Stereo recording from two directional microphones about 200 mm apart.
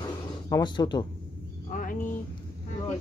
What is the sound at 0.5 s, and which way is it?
Speech, 20° left (ahead or behind).